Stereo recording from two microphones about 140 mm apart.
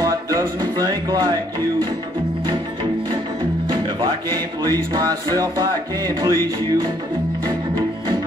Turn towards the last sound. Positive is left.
turn(degrees=-25)  # may be behind; listen again after turning